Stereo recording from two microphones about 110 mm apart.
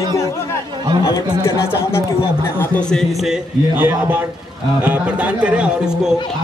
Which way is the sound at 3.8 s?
15° right (ahead or behind).